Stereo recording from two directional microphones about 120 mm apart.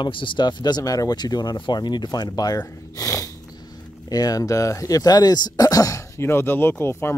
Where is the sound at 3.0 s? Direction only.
30° left (ahead or behind).